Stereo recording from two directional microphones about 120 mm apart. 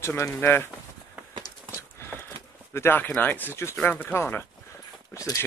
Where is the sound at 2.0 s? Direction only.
20° left (ahead or behind).